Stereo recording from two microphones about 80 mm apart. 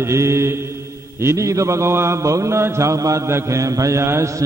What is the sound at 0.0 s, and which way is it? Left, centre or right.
Mantra, right.